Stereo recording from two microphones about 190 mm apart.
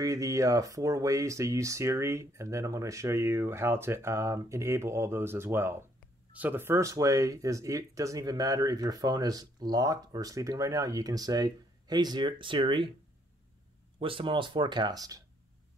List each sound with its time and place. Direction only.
0.0 s speech: 15° right (ahead or behind)
13.9 s speech: 30° right (ahead or behind)